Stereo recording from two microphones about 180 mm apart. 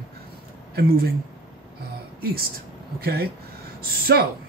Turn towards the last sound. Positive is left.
turn(degrees=-55)  # may be behind; listen again after turning